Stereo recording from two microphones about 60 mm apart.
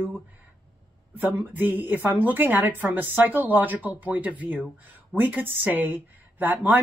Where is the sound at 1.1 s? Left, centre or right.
Right.